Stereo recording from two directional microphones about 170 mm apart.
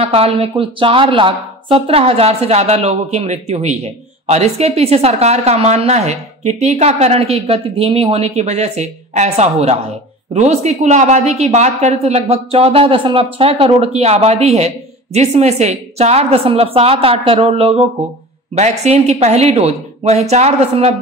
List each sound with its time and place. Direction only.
0.0 s a woman's voice: 35° right (ahead or behind)